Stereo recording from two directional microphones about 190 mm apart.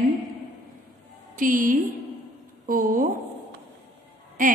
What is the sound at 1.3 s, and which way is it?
Speech, 45° right (ahead or behind).